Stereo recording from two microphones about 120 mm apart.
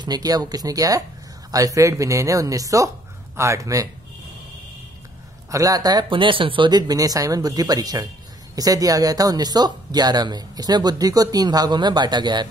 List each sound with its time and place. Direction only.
0.0 s speech: 35° right (ahead or behind)
5.5 s speech: 30° right (ahead or behind)